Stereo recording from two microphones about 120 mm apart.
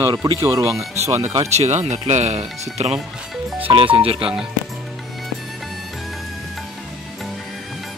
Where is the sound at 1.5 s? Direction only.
70° right (ahead or behind).